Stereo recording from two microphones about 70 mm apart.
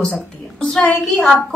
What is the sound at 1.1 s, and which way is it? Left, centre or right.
Speech, centre.